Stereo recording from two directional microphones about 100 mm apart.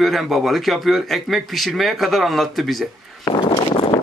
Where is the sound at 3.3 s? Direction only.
60° left (ahead or behind).